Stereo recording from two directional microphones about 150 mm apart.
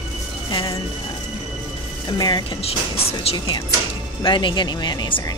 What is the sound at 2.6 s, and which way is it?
Speech, 40° left (ahead or behind).